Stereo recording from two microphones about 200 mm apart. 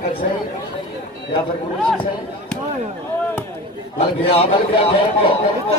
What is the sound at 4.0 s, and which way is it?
A man's voice, 30° left (ahead or behind).